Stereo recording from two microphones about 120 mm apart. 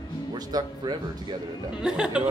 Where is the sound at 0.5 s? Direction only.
30° right (ahead or behind).